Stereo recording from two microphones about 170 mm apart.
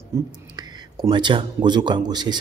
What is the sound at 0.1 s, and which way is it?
Speech, 20° right (ahead or behind).